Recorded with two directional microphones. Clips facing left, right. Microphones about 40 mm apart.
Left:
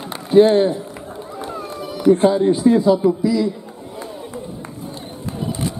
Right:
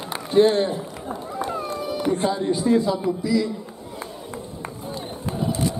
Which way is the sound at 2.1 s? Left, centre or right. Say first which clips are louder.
Left 7 dB; left.